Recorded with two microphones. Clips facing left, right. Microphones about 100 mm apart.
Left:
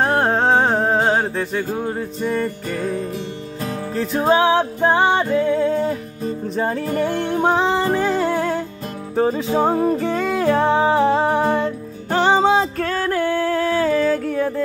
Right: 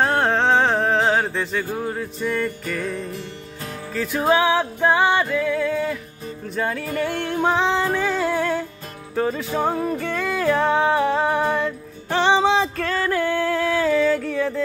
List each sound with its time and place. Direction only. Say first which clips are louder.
0.0 s music: left 2 dB; 5° left (ahead or behind); by 2.9 s 30° left (ahead or behind)
3.9 s music: left 2 dB; 30° left (ahead or behind)
7.4 s music: left 2 dB; 15° left (ahead or behind)
12.7 s music: left 2 dB; 20° left (ahead or behind)